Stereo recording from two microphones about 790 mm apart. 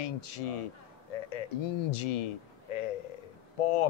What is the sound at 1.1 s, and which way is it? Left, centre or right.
Bird, left.